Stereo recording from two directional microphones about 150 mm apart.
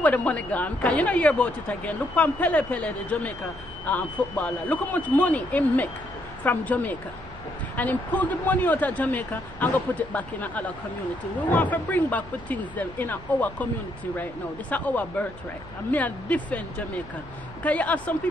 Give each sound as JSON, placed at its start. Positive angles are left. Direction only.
{"t": 0.0, "sound": "a woman's voice", "side_deg": 10}